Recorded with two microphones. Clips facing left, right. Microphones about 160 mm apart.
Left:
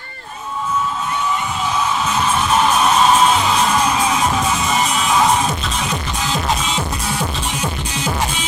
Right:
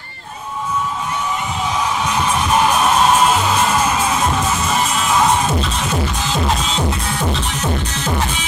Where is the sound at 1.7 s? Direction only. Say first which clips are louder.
Even; 10° right (ahead or behind); by 8.1 s 10° left (ahead or behind).